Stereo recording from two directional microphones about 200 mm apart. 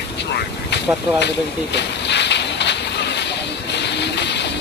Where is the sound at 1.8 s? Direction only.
60° left (ahead or behind).